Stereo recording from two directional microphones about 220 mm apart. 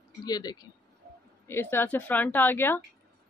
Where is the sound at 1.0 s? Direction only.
45° right (ahead or behind).